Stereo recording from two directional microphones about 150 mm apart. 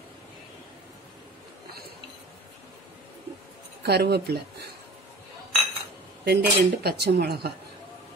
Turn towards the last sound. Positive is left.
turn(degrees=-90)